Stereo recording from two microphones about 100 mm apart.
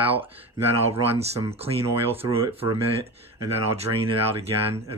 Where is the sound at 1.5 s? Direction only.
80° right.